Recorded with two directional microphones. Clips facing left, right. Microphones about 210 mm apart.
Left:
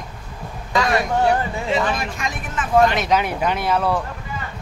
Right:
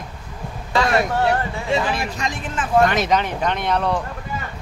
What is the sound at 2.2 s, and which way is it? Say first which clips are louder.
Speech: right 1 dB; 30° right (ahead or behind).